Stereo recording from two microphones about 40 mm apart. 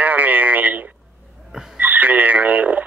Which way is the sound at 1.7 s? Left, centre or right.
Right.